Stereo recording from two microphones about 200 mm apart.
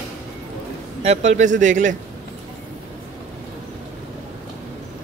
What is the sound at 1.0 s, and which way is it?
Speech, 35° right (ahead or behind).